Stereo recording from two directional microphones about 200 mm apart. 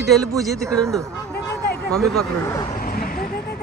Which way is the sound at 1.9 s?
Centre (ahead or behind).